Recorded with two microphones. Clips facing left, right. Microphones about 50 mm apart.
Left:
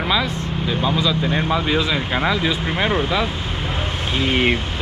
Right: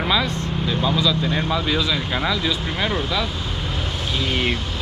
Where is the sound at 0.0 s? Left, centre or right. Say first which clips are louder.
Left 1 dB; centre.